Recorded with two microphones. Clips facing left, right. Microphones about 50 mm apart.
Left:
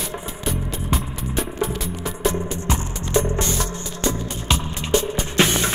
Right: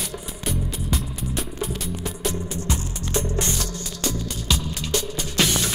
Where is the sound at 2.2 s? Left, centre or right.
Left.